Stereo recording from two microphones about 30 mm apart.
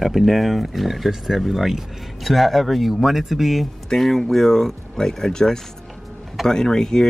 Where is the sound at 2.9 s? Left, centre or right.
Centre.